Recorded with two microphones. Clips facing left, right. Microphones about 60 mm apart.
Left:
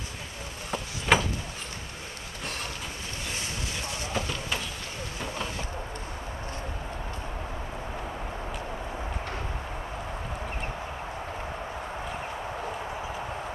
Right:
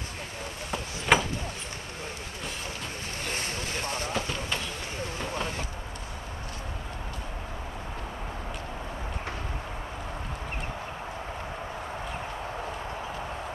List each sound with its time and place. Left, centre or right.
0.7 s a sound: centre
3.3 s boat: right
5.2 s vehicle: centre
12.0 s clip-clop: centre